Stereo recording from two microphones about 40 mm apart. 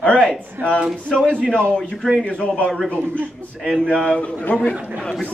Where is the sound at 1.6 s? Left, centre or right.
Centre.